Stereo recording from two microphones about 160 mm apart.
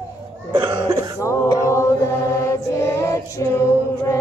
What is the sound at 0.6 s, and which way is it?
Cough, 30° right (ahead or behind).